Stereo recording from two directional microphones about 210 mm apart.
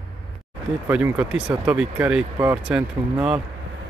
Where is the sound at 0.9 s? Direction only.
5° right (ahead or behind).